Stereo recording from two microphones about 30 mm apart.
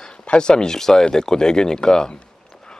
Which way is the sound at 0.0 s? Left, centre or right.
Left.